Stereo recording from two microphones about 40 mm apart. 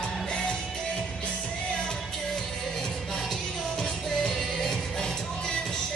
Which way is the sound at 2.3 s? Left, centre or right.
Centre.